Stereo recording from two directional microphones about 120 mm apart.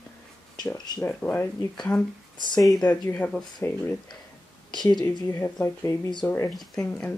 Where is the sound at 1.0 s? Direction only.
15° left (ahead or behind).